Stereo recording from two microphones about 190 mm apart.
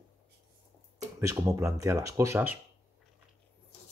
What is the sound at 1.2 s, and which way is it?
Speech, 15° right (ahead or behind).